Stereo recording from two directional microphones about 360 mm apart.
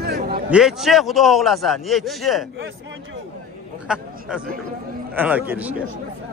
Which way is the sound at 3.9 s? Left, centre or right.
Centre.